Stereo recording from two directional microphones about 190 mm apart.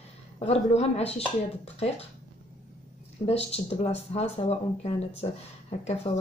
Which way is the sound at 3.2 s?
35° left (ahead or behind).